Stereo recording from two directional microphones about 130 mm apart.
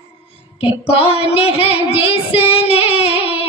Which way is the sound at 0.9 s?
50° left (ahead or behind).